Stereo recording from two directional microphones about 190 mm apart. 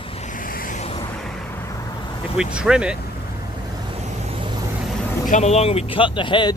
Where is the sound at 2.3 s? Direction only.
5° right (ahead or behind).